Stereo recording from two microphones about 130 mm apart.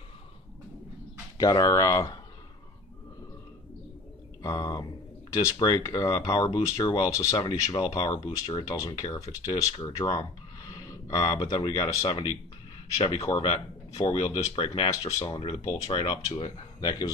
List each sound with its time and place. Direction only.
1.4 s speech: 25° left (ahead or behind)
4.4 s speech: 30° left (ahead or behind)